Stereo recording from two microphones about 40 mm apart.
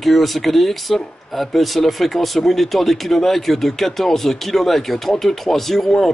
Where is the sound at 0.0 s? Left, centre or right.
Centre.